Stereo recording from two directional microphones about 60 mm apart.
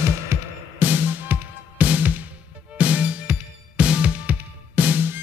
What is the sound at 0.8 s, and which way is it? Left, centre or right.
Music, right.